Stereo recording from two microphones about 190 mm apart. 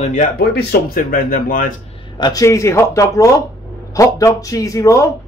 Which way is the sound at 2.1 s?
20° left (ahead or behind).